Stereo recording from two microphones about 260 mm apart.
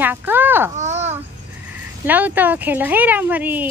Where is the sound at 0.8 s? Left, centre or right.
Right.